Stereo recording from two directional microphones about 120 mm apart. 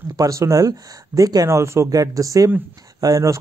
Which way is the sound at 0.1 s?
25° right (ahead or behind).